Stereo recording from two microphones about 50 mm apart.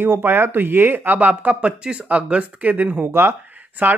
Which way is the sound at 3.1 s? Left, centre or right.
Right.